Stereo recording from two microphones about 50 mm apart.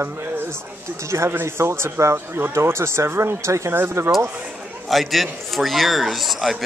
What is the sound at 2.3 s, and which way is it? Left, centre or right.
Speech, right.